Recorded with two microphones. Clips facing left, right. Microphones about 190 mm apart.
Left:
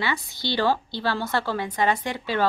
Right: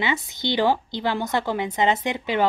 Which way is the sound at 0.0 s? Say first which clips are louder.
Right 3 dB; 20° right (ahead or behind).